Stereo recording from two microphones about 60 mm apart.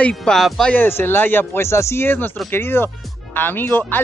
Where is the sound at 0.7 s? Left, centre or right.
Left.